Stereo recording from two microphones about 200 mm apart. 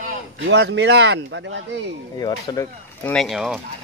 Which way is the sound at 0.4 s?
65° right (ahead or behind).